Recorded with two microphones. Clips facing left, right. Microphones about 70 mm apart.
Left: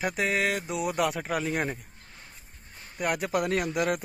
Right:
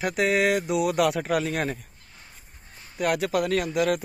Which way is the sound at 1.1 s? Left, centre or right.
Centre.